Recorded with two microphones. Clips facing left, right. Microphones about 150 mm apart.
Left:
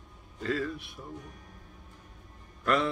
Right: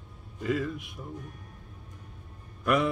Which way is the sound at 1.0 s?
10° right (ahead or behind).